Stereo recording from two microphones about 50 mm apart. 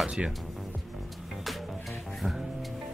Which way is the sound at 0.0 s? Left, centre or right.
Right.